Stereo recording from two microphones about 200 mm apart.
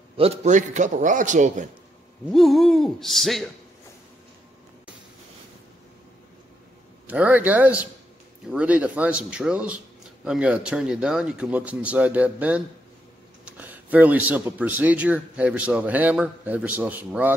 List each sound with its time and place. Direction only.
0.2 s a man's voice: 30° right (ahead or behind)
2.3 s a man's voice: centre (ahead or behind)
7.1 s a man's voice: 10° right (ahead or behind)